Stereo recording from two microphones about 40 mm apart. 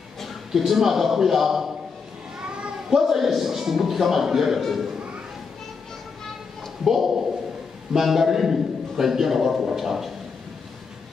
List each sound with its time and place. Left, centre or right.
0.5 s a man's voice: centre
2.4 s a sound: right
2.9 s a man's voice: centre
6.8 s a man's voice: centre